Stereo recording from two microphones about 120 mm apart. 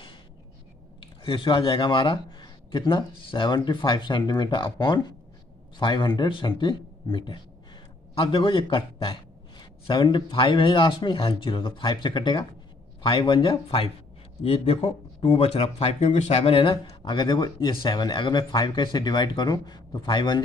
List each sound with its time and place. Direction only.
1.2 s a man's voice: 45° left (ahead or behind)